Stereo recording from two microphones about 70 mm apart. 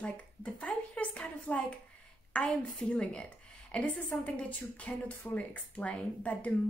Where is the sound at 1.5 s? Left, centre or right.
Left.